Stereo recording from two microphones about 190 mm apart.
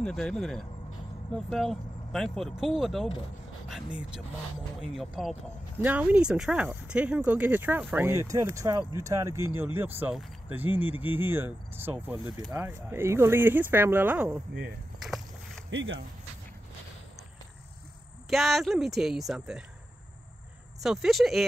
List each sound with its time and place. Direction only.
0.0 s speech: 5° left (ahead or behind)
14.5 s speech: 65° right (ahead or behind)
15.0 s a sound: centre (ahead or behind)
15.7 s speech: 85° right
18.3 s speech: centre (ahead or behind)
20.8 s speech: centre (ahead or behind)